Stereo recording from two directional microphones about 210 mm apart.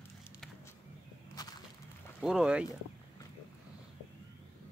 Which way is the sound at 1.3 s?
20° left (ahead or behind).